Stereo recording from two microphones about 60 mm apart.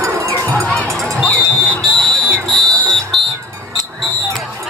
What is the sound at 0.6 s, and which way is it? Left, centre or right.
Crowd, centre.